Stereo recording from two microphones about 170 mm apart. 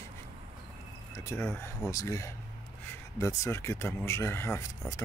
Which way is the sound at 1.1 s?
15° left (ahead or behind).